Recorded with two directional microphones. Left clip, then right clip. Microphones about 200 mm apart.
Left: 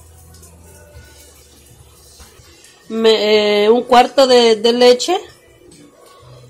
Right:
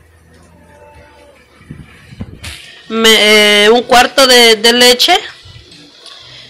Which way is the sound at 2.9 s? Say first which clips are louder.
Right 5 dB; 10° left (ahead or behind).